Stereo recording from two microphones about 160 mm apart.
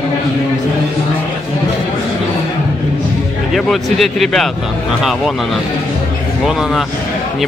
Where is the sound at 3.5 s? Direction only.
Centre (ahead or behind).